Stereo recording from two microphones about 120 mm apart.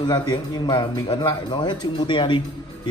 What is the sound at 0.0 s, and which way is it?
A man's voice, 35° left (ahead or behind).